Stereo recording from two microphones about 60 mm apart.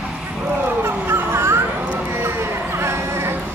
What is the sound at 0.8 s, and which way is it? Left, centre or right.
Dog, right.